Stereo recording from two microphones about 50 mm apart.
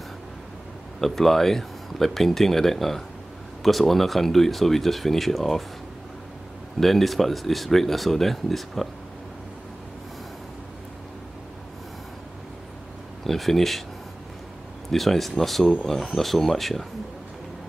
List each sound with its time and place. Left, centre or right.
1.0 s speech: centre
6.8 s speech: centre
13.2 s speech: centre
14.9 s speech: centre